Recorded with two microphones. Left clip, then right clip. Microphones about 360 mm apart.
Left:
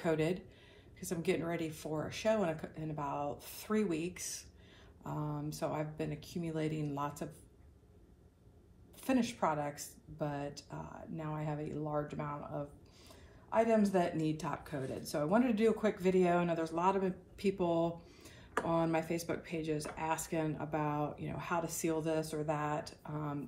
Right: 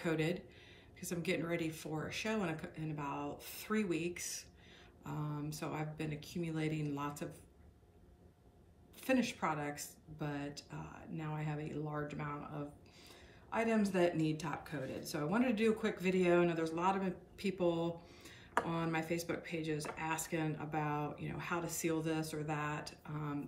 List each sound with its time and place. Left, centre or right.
0.0 s speech: centre
9.0 s speech: centre